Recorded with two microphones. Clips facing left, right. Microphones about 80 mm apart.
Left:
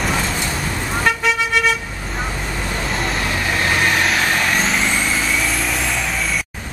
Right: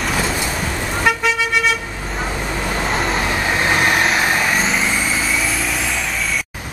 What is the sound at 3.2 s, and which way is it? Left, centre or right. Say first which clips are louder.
Vehicle: right 2 dB; centre.